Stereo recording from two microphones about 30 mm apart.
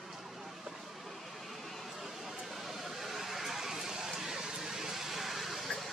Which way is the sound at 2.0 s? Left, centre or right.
Centre.